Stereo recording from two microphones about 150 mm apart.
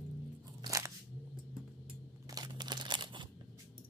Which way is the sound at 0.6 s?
25° right (ahead or behind).